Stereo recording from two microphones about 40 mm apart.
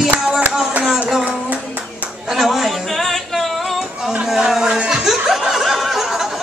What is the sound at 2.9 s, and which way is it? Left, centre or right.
Music, centre.